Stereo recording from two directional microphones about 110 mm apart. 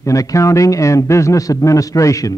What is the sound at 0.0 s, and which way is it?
A man's voice, 30° left (ahead or behind).